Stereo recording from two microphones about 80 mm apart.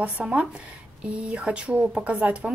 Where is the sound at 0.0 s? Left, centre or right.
Centre.